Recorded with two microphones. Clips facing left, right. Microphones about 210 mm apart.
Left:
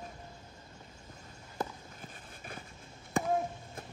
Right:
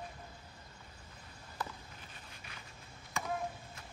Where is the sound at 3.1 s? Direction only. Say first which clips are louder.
Left 9 dB; 50° left (ahead or behind).